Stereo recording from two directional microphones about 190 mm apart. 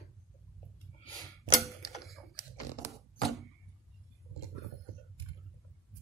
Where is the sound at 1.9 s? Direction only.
Centre (ahead or behind).